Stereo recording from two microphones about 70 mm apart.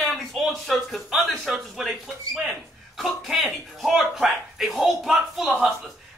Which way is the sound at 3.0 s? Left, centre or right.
Centre.